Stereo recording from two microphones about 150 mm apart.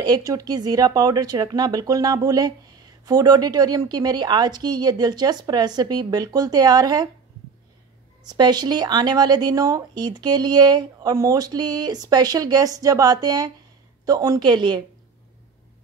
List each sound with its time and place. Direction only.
0.0 s speech: 25° right (ahead or behind)
8.3 s speech: 25° right (ahead or behind)